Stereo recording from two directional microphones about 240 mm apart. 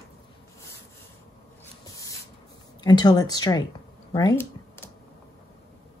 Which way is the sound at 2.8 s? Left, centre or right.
Centre.